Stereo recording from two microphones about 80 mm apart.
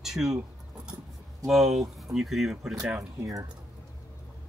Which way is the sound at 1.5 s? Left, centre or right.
Centre.